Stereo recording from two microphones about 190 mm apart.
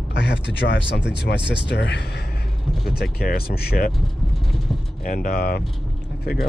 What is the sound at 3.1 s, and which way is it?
Speech, 55° left (ahead or behind).